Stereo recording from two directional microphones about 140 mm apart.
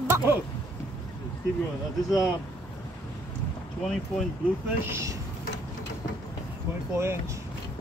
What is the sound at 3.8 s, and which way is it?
Speech, centre (ahead or behind).